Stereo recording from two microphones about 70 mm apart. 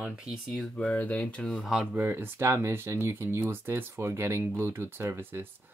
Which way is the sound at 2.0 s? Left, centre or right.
Right.